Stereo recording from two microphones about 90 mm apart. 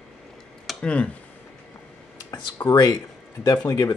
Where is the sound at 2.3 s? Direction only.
40° left (ahead or behind).